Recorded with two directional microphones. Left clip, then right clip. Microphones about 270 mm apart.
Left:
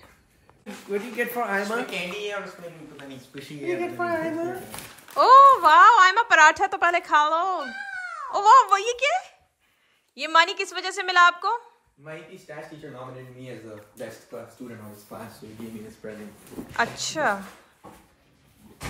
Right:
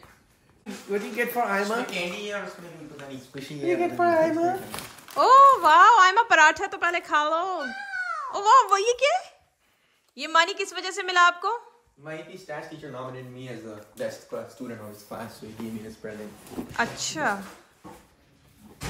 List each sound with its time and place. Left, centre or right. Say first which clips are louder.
0.8 s a woman's voice: even; centre
3.3 s a woman's voice: right 3 dB; right
4.4 s a woman's voice: right 5 dB; centre
16.0 s a woman's voice: even; centre